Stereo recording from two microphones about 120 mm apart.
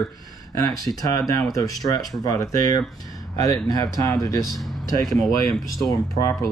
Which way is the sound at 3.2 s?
30° left (ahead or behind).